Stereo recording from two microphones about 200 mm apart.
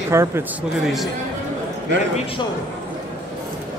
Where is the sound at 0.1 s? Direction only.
15° right (ahead or behind).